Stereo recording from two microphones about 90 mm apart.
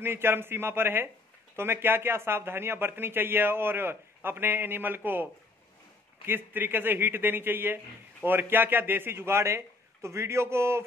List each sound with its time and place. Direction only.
0.0 s a man's voice: 25° right (ahead or behind)